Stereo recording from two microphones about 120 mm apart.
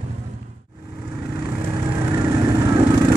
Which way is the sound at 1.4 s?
20° right (ahead or behind).